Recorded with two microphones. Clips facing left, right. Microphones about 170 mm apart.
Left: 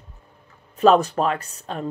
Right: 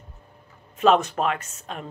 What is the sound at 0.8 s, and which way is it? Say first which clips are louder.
Speech: left 3 dB; 35° left (ahead or behind).